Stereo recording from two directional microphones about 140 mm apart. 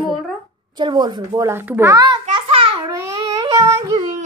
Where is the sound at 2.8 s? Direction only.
25° right (ahead or behind).